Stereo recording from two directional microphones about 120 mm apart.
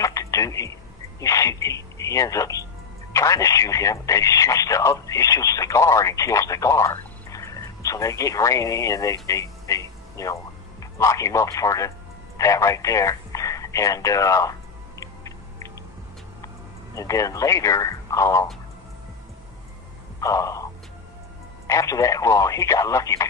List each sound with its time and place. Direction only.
0.0 s a sound: 25° left (ahead or behind)
1.2 s speech: 25° left (ahead or behind)
12.4 s radio: 25° left (ahead or behind)
16.9 s speech: 25° left (ahead or behind)
20.2 s a sound: 25° left (ahead or behind)
21.6 s speech: 25° left (ahead or behind)